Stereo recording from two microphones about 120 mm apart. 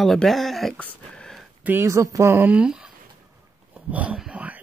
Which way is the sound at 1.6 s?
20° right (ahead or behind).